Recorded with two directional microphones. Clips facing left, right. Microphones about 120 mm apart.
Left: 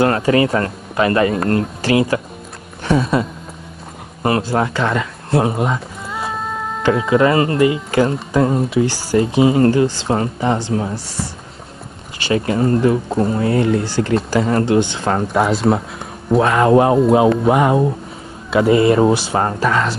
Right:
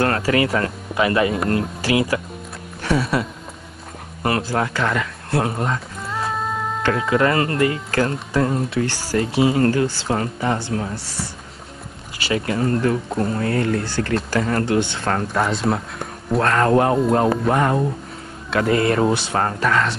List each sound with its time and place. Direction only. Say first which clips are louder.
0.0 s speech: left 4 dB; 20° left (ahead or behind)
0.9 s speech: left 3 dB; 45° left (ahead or behind)
2.8 s a sound: left 4 dB; 20° left (ahead or behind)
4.2 s speech: left 4 dB; 25° left (ahead or behind)
5.7 s music: left 2 dB; 5° left (ahead or behind)
6.8 s speech: left 5 dB; 10° left (ahead or behind)
8.6 s speech: left 5 dB; 5° left (ahead or behind)
9.1 s speech: left 4 dB; 20° left (ahead or behind)
12.3 s speech: left 4 dB; 25° left (ahead or behind)
15.2 s speech: left 7 dB; centre (ahead or behind)
16.6 s speech: left 5 dB; 15° left (ahead or behind)
17.0 s speech: left 5 dB; 5° left (ahead or behind)